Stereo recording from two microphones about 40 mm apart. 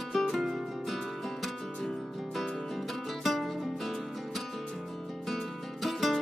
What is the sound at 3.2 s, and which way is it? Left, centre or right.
Music, centre.